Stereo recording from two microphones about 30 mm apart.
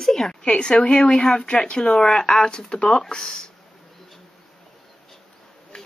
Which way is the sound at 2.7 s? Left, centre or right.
Left.